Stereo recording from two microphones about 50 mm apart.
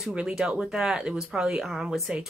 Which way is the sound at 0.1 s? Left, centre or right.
Right.